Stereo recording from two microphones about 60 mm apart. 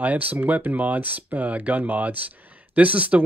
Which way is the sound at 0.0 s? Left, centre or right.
Right.